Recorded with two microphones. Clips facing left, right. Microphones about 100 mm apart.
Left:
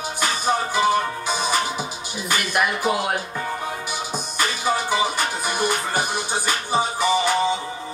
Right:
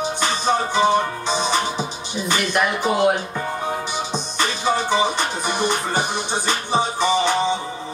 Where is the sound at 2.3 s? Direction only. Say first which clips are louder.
Right 2 dB; 5° left (ahead or behind).